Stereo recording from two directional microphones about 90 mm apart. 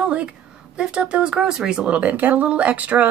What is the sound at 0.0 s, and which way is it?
A woman's voice, 15° right (ahead or behind).